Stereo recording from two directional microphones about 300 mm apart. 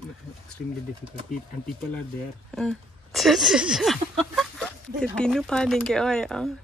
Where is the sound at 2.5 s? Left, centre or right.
Centre.